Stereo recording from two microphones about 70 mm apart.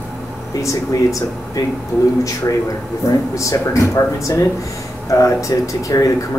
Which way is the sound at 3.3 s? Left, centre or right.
Left.